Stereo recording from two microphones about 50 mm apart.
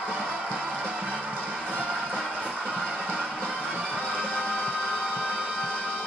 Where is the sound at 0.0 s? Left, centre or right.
Right.